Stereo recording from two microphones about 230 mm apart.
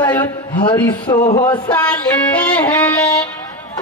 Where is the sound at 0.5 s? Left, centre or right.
Centre.